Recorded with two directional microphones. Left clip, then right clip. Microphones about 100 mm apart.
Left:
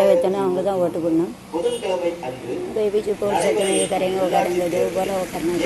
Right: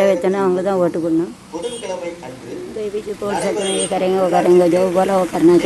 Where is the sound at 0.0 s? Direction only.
80° right.